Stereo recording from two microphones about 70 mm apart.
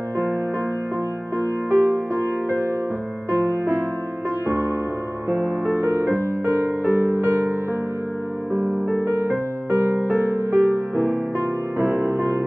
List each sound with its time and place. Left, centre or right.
1.4 s music: right
5.3 s music: right
9.0 s music: right